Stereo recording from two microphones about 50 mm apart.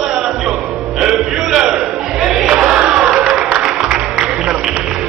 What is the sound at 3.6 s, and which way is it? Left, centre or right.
Music, centre.